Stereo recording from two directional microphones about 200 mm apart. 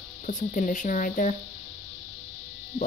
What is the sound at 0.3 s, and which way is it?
Speech, 40° left (ahead or behind).